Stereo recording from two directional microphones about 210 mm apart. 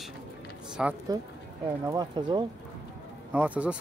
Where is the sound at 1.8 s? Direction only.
20° right (ahead or behind).